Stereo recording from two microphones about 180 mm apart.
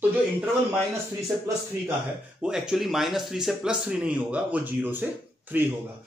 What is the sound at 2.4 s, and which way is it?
Speech, 5° right (ahead or behind).